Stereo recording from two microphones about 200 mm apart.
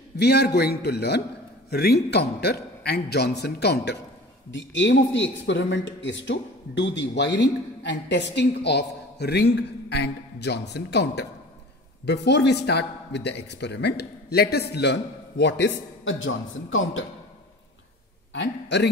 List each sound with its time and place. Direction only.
0.2 s a man's voice: 55° left (ahead or behind)
16.0 s a man's voice: 75° left (ahead or behind)
18.3 s a man's voice: 60° left (ahead or behind)